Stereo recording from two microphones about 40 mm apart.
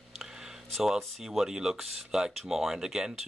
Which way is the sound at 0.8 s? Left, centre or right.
Centre.